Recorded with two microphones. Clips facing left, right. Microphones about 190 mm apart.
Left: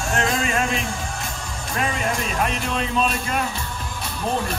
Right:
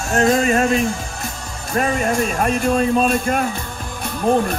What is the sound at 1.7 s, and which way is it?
Speech, 45° right (ahead or behind).